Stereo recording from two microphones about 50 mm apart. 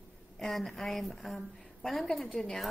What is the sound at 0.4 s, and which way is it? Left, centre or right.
A woman's voice, centre.